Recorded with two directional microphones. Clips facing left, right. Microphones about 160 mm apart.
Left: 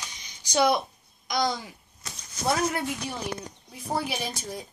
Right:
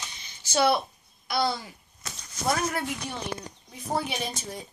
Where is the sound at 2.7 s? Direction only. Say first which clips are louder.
Left 1 dB; 5° left (ahead or behind).